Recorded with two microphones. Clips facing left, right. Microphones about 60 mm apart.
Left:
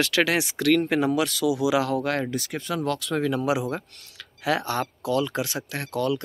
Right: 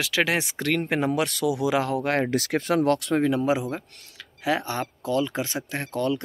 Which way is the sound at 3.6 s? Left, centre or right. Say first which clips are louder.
Left 2 dB; centre.